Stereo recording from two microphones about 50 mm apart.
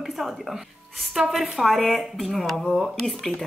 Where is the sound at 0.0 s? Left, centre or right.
Centre.